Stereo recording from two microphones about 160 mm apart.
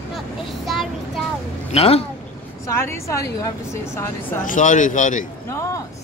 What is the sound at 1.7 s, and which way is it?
Speech, 40° left (ahead or behind).